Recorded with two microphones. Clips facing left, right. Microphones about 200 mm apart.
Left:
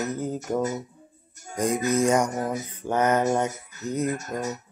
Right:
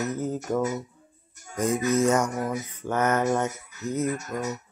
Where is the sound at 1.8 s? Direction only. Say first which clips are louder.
Left 1 dB; 15° left (ahead or behind).